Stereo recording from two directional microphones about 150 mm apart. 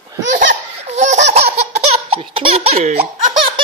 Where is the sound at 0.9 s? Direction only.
50° right (ahead or behind).